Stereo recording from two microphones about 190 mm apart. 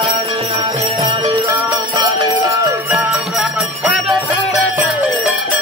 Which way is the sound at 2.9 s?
5° right (ahead or behind).